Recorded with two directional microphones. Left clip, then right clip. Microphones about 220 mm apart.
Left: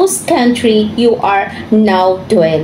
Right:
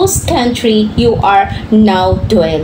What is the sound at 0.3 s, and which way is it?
A woman's voice, centre (ahead or behind).